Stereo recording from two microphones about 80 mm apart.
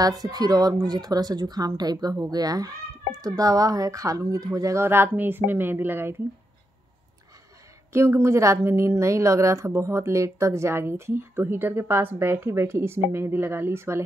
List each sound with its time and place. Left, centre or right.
0.0 s speech: right
4.8 s speech: right
7.9 s a woman's voice: right